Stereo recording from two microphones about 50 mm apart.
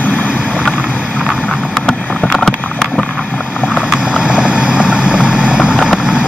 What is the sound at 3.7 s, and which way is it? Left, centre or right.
Vehicle, centre.